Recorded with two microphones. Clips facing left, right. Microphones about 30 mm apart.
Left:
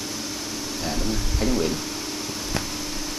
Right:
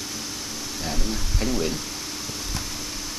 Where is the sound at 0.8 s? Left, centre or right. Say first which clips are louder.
Left 2 dB; centre.